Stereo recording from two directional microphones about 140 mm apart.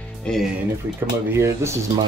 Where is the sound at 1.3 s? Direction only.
20° right (ahead or behind).